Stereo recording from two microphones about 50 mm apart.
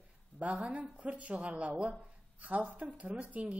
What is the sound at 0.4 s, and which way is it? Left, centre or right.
A woman's voice, right.